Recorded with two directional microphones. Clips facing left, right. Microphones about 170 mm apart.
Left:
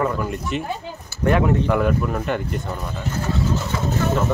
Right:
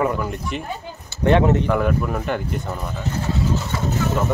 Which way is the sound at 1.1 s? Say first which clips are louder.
Right 2 dB; 25° right (ahead or behind).